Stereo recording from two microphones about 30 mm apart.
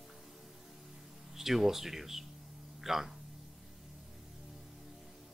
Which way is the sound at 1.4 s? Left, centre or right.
Centre.